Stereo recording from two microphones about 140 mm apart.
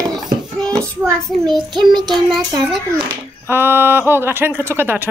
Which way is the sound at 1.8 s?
30° right (ahead or behind).